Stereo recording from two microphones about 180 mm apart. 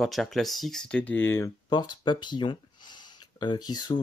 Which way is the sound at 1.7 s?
25° left (ahead or behind).